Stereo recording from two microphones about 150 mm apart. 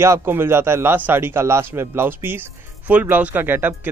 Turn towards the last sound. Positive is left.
turn(degrees=-15)  # may be behind; listen again after turning